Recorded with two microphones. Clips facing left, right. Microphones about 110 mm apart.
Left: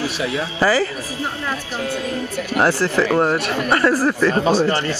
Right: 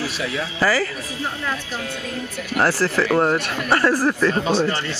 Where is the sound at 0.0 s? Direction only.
25° left (ahead or behind).